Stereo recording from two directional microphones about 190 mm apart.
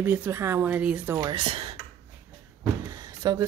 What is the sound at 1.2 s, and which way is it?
Speech, 25° right (ahead or behind).